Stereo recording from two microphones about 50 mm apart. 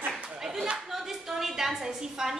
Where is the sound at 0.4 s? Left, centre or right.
Centre.